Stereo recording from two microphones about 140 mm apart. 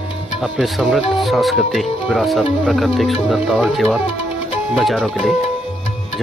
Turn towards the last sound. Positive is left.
turn(degrees=0)  # may be behind; listen again after turning